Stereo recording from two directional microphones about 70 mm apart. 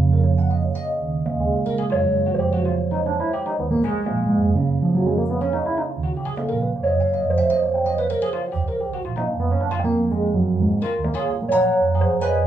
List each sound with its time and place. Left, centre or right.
6.8 s music: left
11.5 s music: left